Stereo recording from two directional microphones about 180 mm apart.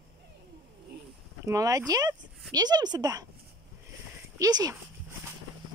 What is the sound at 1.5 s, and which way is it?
Speech, 20° right (ahead or behind).